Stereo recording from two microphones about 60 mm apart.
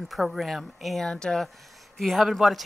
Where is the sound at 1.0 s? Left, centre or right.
Centre.